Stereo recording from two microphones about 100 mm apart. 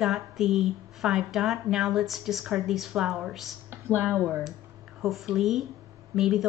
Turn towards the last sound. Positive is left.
turn(degrees=-5)  # may be behind; listen again after turning